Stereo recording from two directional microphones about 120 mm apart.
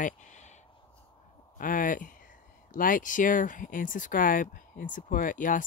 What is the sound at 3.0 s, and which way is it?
Speech, 90° left.